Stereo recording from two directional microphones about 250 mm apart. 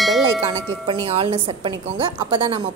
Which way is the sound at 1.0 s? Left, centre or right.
Right.